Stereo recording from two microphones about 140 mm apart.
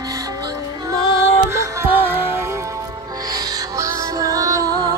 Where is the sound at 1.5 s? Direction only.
15° right (ahead or behind).